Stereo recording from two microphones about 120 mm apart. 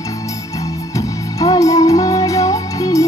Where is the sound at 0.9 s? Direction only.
30° left (ahead or behind).